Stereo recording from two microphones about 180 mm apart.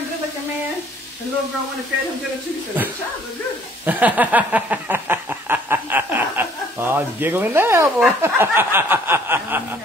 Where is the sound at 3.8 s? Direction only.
10° right (ahead or behind).